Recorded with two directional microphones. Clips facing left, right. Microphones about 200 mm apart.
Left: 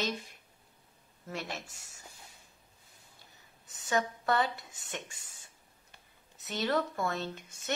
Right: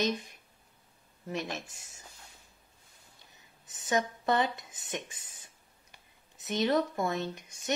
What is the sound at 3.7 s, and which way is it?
A woman's voice, 20° right (ahead or behind).